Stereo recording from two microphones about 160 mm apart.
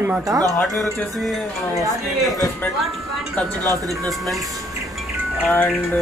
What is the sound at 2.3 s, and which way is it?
Speech, 20° left (ahead or behind).